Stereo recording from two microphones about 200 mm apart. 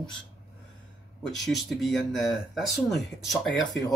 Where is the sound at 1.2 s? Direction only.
Centre (ahead or behind).